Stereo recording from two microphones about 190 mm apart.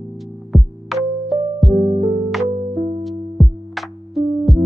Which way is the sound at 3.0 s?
Centre (ahead or behind).